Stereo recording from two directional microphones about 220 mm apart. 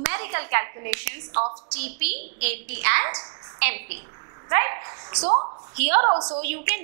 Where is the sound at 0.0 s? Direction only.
15° right (ahead or behind).